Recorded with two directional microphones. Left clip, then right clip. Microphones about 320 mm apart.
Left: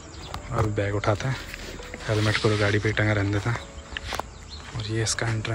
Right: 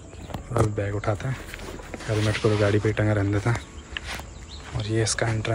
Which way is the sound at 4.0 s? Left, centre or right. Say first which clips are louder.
Left 2 dB; centre.